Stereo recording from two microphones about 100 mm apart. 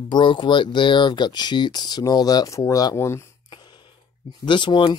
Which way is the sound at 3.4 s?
50° left (ahead or behind).